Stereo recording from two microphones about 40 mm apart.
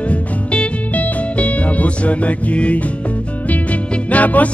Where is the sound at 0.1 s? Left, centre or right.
Left.